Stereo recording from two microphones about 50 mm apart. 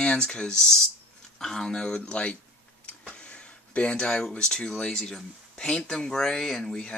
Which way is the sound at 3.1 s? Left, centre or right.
Left.